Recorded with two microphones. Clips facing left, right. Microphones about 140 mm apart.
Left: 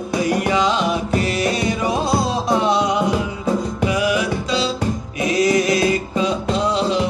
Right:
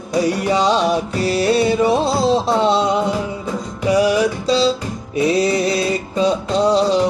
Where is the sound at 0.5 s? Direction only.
35° right (ahead or behind).